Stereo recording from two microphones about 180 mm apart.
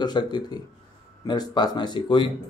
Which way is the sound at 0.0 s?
25° left (ahead or behind).